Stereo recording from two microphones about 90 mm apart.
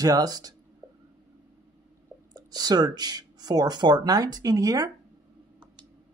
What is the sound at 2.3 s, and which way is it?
Speech, 45° right (ahead or behind).